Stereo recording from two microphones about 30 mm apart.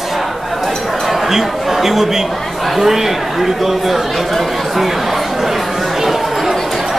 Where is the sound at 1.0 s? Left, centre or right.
Centre.